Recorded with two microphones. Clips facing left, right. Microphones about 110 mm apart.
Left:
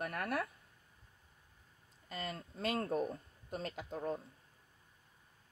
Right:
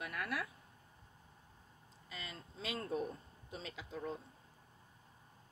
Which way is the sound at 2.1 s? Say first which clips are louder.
Left 7 dB; 50° left (ahead or behind).